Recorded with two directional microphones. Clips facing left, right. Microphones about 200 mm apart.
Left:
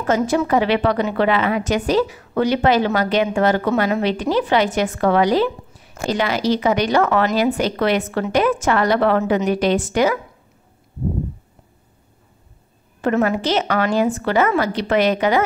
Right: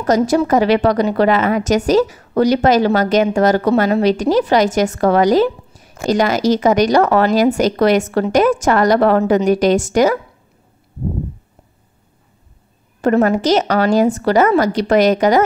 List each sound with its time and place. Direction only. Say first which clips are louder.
0.0 s a woman's voice: right 4 dB; 40° right (ahead or behind)
13.0 s a woman's voice: right 5 dB; 45° right (ahead or behind)